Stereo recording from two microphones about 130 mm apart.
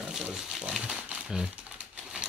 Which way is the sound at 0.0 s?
5° right (ahead or behind).